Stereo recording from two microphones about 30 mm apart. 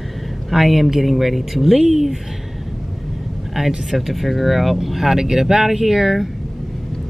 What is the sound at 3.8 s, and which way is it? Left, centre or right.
Speech, centre.